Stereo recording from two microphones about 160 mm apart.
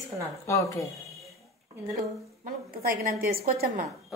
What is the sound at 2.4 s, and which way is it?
A woman's voice, 60° right (ahead or behind).